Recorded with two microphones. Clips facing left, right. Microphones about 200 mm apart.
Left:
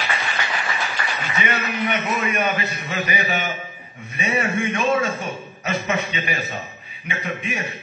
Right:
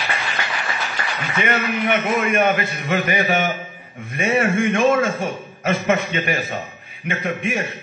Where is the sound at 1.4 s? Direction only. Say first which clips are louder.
Right 4 dB; 50° right (ahead or behind).